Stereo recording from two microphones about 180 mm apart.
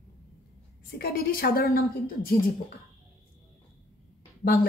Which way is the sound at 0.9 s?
60° left (ahead or behind).